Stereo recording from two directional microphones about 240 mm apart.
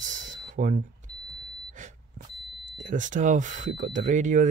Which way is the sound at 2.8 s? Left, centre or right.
Right.